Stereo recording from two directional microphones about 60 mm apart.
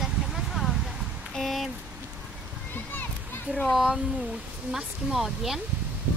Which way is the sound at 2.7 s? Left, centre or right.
Left.